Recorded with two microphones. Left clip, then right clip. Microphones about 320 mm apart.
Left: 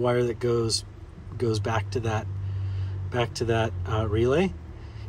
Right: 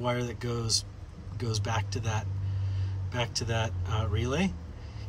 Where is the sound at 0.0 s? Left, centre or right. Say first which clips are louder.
Left 8 dB; centre.